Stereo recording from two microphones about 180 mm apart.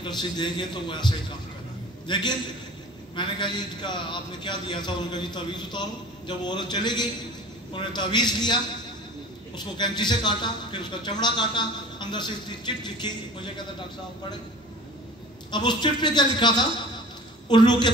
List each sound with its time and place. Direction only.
0.0 s a man's voice: 25° left (ahead or behind)
9.6 s a man's voice: 25° left (ahead or behind)
15.5 s a man's voice: 25° left (ahead or behind)